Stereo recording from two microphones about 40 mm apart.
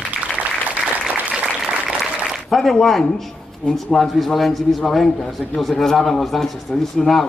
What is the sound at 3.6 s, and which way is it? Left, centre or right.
Speech, left.